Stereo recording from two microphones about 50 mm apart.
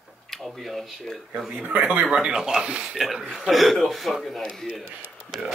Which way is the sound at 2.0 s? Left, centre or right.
Centre.